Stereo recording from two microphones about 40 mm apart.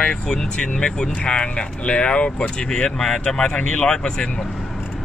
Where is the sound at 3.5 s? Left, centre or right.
Left.